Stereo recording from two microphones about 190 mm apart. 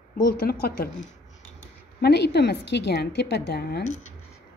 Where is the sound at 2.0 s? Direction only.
60° left (ahead or behind).